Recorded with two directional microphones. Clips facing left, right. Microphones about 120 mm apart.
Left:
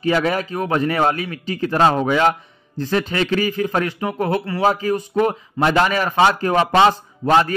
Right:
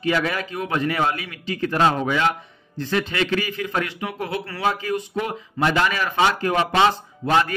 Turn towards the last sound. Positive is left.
turn(degrees=35)  # may be behind; listen again after turning